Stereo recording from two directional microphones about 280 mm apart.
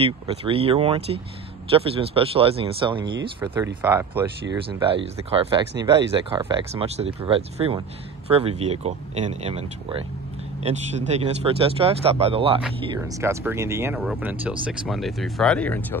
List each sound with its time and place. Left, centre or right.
0.0 s speech: centre
4.6 s speech: centre